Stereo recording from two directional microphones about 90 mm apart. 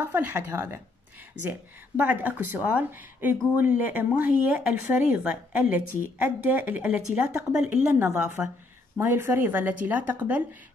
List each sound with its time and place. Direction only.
0.0 s speech: 20° right (ahead or behind)
7.9 s speech: 30° right (ahead or behind)